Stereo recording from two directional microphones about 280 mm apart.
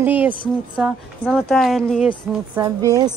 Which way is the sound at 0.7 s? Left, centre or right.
Centre.